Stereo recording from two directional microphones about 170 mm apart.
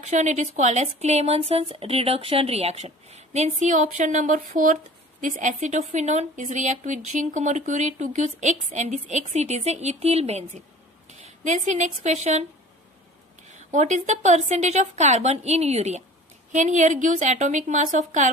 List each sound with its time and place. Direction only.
0.0 s a woman's voice: 45° right (ahead or behind)
13.7 s a woman's voice: 45° right (ahead or behind)